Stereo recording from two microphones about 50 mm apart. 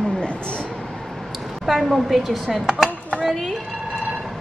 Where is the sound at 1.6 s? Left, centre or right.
Centre.